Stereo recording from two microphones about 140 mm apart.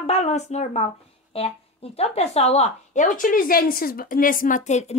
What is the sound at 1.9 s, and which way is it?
A woman's voice, 50° left (ahead or behind).